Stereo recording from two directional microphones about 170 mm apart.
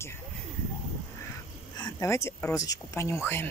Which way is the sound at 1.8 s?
15° left (ahead or behind).